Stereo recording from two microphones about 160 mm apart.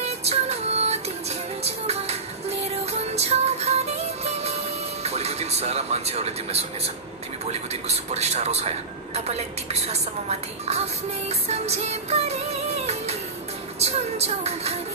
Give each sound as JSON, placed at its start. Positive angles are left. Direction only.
{"t": 0.0, "sound": "music", "side_deg": -40}
{"t": 8.1, "sound": "a woman's voice", "side_deg": -45}
{"t": 11.2, "sound": "music", "side_deg": -40}